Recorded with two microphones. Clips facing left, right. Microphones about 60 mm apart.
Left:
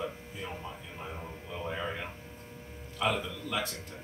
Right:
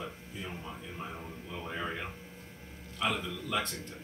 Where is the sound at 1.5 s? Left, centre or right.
Centre.